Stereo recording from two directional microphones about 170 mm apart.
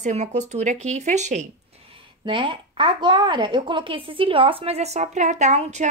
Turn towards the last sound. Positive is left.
turn(degrees=-45)  # may be behind; listen again after turning